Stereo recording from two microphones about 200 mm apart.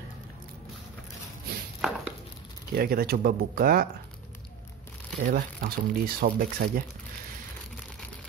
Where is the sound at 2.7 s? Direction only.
50° right (ahead or behind).